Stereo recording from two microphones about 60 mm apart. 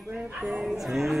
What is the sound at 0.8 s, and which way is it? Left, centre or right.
Speech, centre.